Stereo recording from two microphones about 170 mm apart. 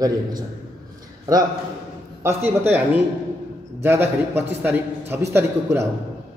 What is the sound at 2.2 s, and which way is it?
Speech, 15° right (ahead or behind).